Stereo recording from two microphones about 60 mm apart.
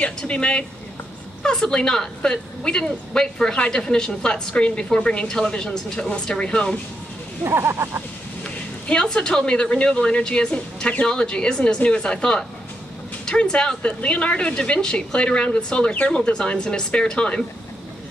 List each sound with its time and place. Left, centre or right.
0.0 s a woman's voice: centre
7.4 s speech: right
8.8 s a woman's voice: centre